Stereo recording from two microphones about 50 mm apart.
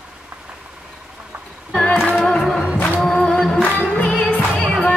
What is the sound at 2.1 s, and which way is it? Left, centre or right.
Music, centre.